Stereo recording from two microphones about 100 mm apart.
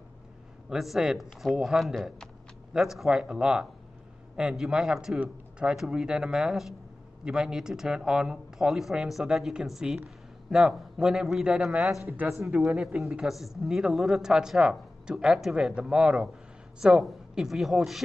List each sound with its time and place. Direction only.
0.7 s a man's voice: 5° right (ahead or behind)
12.3 s speech: 5° right (ahead or behind)